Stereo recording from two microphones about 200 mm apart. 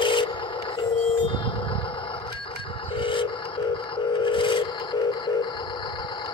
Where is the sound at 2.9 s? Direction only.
25° left (ahead or behind).